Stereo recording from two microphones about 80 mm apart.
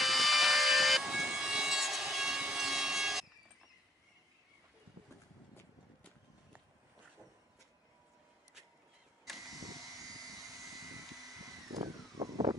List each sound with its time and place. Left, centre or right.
0.0 s vehicle: centre
9.6 s vehicle: right
11.7 s vehicle: right